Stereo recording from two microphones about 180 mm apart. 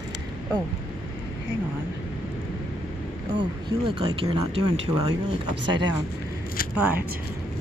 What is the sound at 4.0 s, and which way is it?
Speech, 30° right (ahead or behind).